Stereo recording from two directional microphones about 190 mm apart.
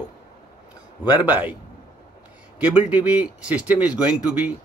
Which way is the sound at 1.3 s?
10° right (ahead or behind).